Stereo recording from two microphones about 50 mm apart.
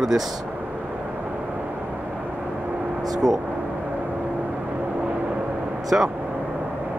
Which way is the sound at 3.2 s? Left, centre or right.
Centre.